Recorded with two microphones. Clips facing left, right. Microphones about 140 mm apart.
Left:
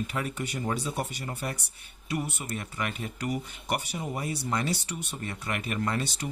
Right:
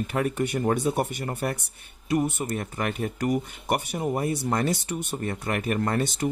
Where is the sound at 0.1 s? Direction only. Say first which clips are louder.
Right 7 dB; 55° right (ahead or behind).